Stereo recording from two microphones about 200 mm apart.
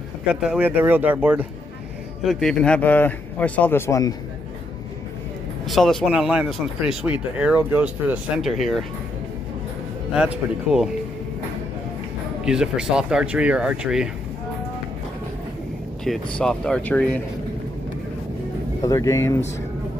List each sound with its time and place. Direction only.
0.3 s speech: 5° right (ahead or behind)
2.2 s speech: 5° left (ahead or behind)
5.7 s speech: centre (ahead or behind)
10.1 s speech: 5° right (ahead or behind)
12.4 s speech: 5° right (ahead or behind)
16.0 s speech: 5° left (ahead or behind)
18.8 s speech: 15° left (ahead or behind)